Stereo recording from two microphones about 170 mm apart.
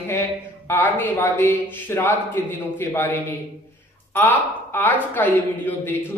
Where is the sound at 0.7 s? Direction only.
10° left (ahead or behind).